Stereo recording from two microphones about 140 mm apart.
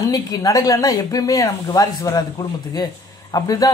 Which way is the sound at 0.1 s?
25° left (ahead or behind).